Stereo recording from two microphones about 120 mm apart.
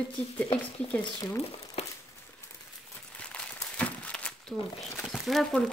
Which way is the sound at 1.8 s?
55° left (ahead or behind).